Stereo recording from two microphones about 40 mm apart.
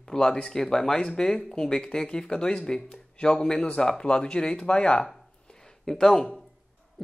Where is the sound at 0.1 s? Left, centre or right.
Centre.